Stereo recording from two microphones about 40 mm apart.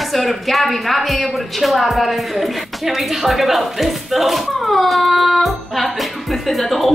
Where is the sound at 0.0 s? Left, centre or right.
Centre.